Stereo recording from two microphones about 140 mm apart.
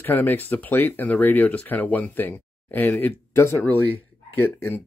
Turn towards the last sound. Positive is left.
turn(degrees=15)  # may be behind; listen again after turning